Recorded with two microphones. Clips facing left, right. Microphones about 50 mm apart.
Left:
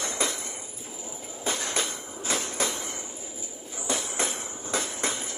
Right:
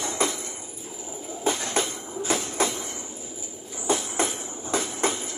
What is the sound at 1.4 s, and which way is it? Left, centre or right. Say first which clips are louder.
Train: right 4 dB; right.